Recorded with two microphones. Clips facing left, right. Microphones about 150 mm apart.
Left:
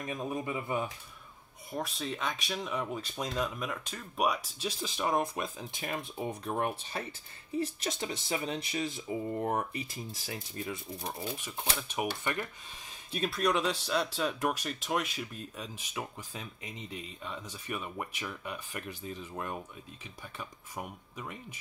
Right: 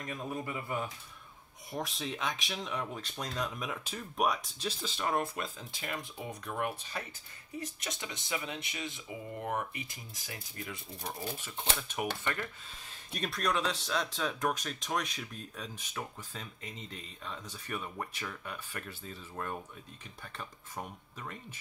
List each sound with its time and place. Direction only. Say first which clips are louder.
0.0 s speech: left 3 dB; 15° left (ahead or behind)
1.7 s speech: left 1 dB; centre (ahead or behind); by 10.8 s 30° left (ahead or behind)
11.0 s speech: left 2 dB; 10° left (ahead or behind)
13.1 s speech: left 3 dB; 5° left (ahead or behind)